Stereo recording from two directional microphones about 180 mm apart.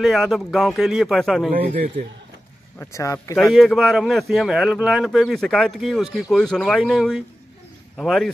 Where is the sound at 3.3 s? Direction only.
Centre (ahead or behind).